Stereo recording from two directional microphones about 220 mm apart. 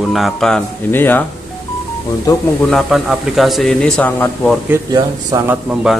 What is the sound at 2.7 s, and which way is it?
Speech, centre (ahead or behind).